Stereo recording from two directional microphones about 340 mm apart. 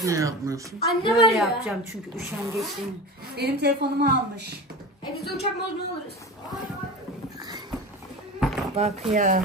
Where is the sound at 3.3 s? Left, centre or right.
Right.